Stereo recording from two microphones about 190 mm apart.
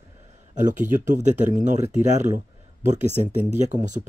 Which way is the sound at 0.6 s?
40° right (ahead or behind).